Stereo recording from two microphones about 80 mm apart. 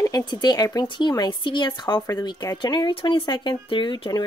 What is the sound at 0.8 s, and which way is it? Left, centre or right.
Speech, left.